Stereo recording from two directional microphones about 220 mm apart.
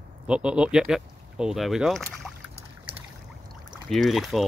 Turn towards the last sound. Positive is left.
turn(degrees=0)  # may be behind; listen again after turning